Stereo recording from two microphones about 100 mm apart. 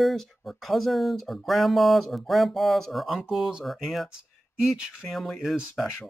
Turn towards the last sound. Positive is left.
turn(degrees=-5)  # may be behind; listen again after turning